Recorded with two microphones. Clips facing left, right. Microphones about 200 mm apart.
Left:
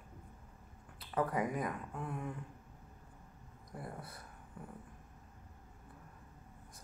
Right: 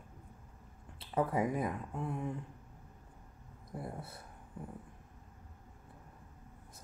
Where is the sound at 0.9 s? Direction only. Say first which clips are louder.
Right 2 dB; 25° right (ahead or behind).